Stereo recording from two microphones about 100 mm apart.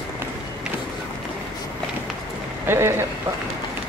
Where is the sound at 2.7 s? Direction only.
25° right (ahead or behind).